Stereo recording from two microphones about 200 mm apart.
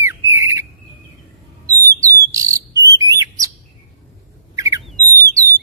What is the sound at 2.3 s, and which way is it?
Chirp, 15° right (ahead or behind).